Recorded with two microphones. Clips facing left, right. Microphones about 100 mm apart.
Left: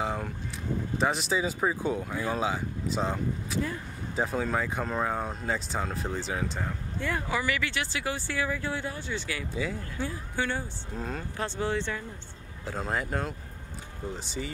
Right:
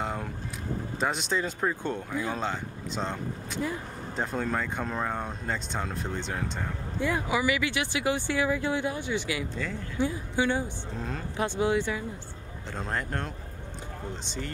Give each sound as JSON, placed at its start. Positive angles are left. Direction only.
{"t": 0.0, "sound": "vehicle", "side_deg": 0}
{"t": 0.9, "sound": "speech", "side_deg": 0}
{"t": 7.0, "sound": "speech", "side_deg": -15}
{"t": 11.0, "sound": "speech", "side_deg": 0}
{"t": 11.3, "sound": "speech", "side_deg": -15}
{"t": 12.6, "sound": "speech", "side_deg": 5}